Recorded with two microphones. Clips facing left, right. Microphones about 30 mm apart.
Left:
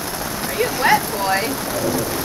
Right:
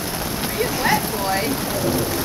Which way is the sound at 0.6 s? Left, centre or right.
Left.